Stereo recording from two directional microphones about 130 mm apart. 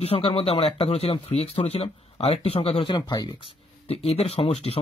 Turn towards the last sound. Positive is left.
turn(degrees=50)  # may be behind; listen again after turning